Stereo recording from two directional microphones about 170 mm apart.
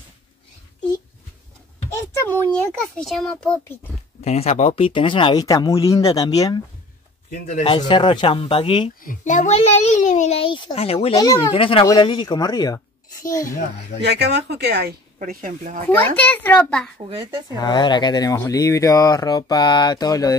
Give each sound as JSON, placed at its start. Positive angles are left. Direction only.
{"t": 2.1, "sound": "a sound", "side_deg": 10}
{"t": 3.1, "sound": "a child's voice", "side_deg": 5}
{"t": 4.2, "sound": "speech", "side_deg": 40}
{"t": 7.2, "sound": "speech", "side_deg": 50}
{"t": 7.6, "sound": "speech", "side_deg": 30}
{"t": 9.0, "sound": "a child's voice", "side_deg": 50}
{"t": 11.1, "sound": "speech", "side_deg": 20}
{"t": 14.0, "sound": "speech", "side_deg": -80}
{"t": 15.1, "sound": "speech", "side_deg": -50}
{"t": 16.2, "sound": "a child's voice", "side_deg": 10}
{"t": 17.1, "sound": "speech", "side_deg": -30}
{"t": 17.6, "sound": "speech", "side_deg": 25}